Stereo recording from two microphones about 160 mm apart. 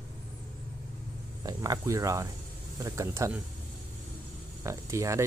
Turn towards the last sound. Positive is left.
turn(degrees=-20)  # may be behind; listen again after turning